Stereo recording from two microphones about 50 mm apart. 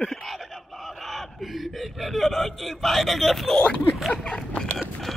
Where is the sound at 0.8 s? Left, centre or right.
Centre.